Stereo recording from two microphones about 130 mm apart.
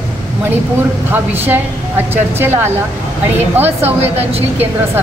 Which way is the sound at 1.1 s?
15° right (ahead or behind).